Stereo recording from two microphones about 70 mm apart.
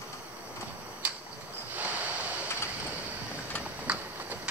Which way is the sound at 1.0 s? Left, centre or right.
Centre.